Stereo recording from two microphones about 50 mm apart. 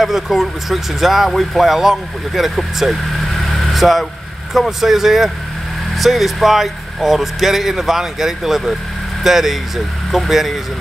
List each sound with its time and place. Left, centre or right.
0.0 s speech: centre